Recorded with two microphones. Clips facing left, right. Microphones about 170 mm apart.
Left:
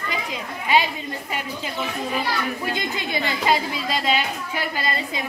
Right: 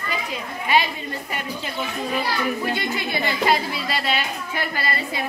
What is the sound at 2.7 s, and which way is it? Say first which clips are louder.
A woman's voice: right 1 dB; 15° left (ahead or behind).